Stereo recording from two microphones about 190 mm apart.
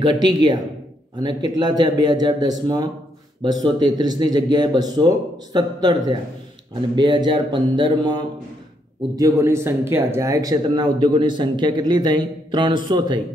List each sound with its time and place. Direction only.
0.0 s speech: 20° right (ahead or behind)